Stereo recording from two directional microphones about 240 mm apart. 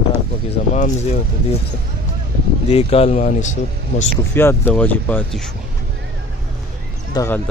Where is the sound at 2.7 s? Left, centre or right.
Left.